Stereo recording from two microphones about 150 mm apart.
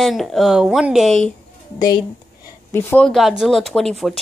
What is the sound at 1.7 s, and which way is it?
Speech, 30° left (ahead or behind).